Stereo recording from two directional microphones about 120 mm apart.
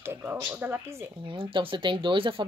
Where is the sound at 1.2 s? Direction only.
45° right (ahead or behind).